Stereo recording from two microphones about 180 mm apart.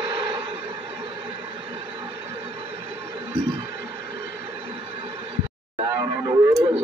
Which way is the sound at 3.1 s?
25° right (ahead or behind).